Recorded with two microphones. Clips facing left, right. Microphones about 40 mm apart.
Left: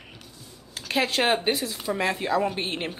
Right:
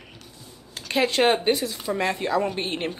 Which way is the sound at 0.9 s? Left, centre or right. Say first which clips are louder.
Right 3 dB; centre.